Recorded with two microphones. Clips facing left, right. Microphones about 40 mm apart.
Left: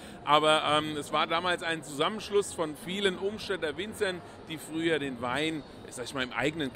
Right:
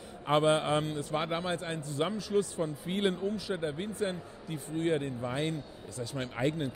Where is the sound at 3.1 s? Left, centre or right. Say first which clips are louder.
Left 1 dB; left.